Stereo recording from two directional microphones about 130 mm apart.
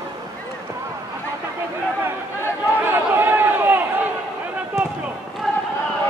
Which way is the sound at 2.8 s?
15° right (ahead or behind).